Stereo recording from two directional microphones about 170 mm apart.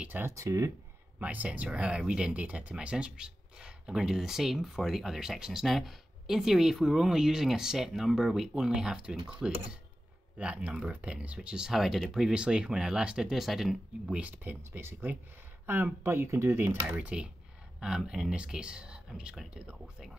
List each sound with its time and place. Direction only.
0.0 s speech: 15° right (ahead or behind)
10.3 s speech: 5° right (ahead or behind)